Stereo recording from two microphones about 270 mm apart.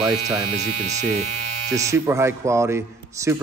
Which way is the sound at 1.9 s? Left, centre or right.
Centre.